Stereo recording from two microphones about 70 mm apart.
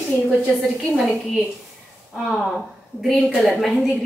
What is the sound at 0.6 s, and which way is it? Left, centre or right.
Speech, centre.